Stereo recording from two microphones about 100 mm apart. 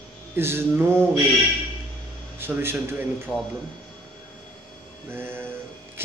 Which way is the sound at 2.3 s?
20° right (ahead or behind).